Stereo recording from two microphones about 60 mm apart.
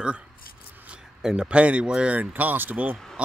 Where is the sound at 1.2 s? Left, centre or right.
Centre.